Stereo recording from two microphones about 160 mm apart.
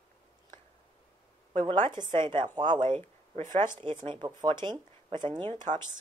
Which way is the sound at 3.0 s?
15° left (ahead or behind).